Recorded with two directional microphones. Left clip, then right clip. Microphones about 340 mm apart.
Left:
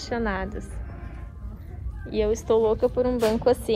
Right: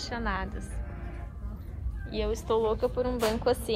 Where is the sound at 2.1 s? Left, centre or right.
Centre.